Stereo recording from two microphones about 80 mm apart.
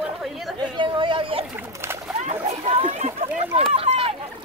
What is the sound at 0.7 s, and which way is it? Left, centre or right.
Chatter, right.